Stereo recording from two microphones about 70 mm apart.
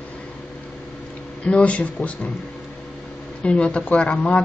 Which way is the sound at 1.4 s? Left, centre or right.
Centre.